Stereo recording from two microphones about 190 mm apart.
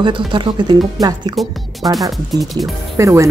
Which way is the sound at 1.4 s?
Centre (ahead or behind).